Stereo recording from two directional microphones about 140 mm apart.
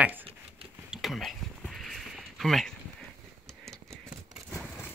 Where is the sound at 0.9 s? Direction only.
Centre (ahead or behind).